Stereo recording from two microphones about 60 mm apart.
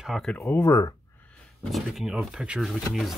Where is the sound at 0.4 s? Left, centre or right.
Left.